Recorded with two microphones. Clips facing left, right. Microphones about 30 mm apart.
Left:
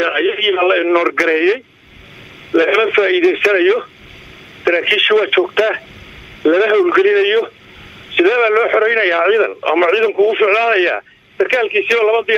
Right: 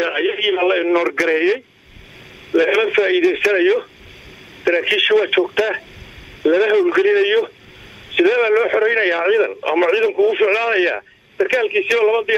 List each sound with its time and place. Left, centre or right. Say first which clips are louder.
0.0 s speech: left 3 dB; centre
2.7 s speech: left 3 dB; centre